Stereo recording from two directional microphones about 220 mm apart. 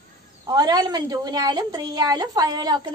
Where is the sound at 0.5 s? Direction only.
15° right (ahead or behind).